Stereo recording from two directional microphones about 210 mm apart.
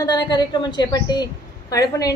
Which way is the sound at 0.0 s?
20° left (ahead or behind).